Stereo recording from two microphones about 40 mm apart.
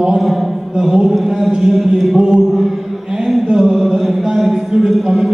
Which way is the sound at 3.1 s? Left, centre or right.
Centre.